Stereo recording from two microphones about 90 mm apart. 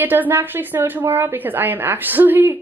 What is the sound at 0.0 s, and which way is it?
A woman's voice, 20° right (ahead or behind).